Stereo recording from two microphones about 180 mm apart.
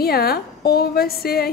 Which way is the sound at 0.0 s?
55° left (ahead or behind).